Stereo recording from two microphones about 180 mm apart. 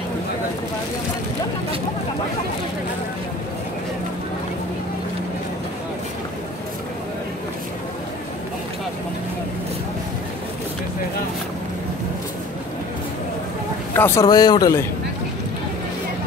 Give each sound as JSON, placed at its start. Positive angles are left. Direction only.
{"t": 13.9, "sound": "a man's voice", "side_deg": 15}